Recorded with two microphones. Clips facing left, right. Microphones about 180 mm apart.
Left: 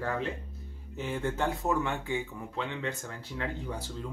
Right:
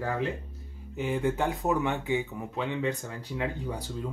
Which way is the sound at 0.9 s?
15° right (ahead or behind).